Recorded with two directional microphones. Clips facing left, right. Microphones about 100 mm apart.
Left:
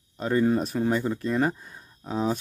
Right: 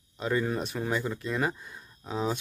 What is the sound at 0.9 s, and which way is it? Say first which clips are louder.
Speech: left 5 dB; 40° left (ahead or behind).